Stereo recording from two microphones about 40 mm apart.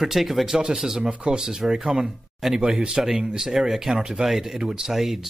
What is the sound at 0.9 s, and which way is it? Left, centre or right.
Speech, centre.